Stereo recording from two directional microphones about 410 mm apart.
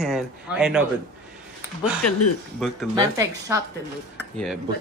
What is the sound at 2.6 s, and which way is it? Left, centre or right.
Speech, centre.